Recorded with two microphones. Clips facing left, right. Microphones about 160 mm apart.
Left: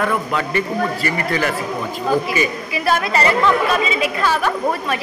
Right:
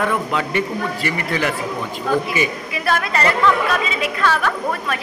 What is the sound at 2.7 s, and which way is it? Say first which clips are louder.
A woman's voice: left 3 dB; 5° left (ahead or behind).